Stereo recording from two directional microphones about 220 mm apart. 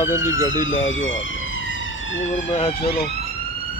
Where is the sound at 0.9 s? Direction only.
60° left (ahead or behind).